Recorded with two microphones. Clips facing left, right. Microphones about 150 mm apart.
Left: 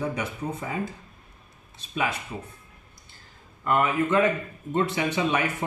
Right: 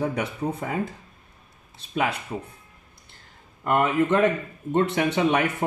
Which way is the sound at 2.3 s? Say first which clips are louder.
Right 4 dB; 35° right (ahead or behind).